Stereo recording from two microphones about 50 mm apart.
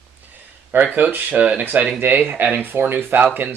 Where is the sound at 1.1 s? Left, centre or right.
Right.